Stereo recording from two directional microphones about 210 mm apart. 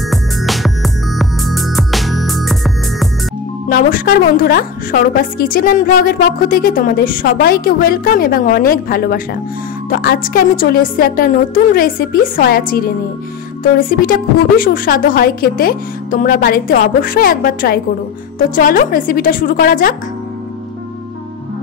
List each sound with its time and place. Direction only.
0.1 s music: centre (ahead or behind)
3.6 s a woman's voice: 45° left (ahead or behind)